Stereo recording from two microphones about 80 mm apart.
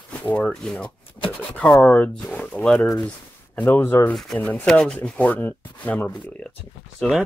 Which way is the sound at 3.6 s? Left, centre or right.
Left.